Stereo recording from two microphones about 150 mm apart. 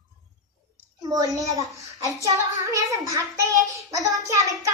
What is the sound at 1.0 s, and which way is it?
A child's voice, 25° right (ahead or behind).